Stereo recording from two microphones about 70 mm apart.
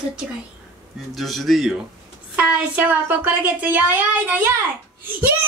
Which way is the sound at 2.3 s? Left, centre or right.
Right.